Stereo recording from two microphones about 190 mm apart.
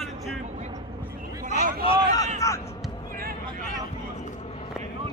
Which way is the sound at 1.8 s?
25° left (ahead or behind).